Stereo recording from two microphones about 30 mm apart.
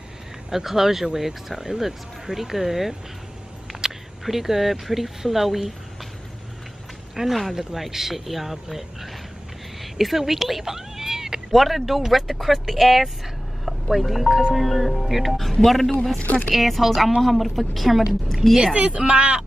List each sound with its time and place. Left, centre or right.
0.5 s speech: centre
4.2 s speech: centre
7.2 s speech: centre
10.6 s cat: centre
11.5 s speech: centre
18.8 s speech: right